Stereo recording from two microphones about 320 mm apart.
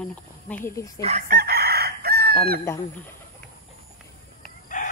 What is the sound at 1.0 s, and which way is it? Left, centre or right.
Chicken, right.